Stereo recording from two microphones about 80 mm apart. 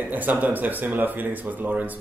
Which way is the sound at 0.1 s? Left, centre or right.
Right.